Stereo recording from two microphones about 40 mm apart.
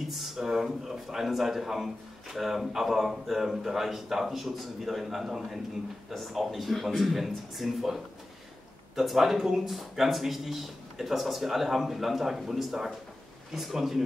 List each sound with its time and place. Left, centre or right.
0.1 s speech: centre